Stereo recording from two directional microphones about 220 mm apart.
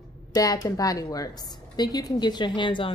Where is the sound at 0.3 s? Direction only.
15° left (ahead or behind).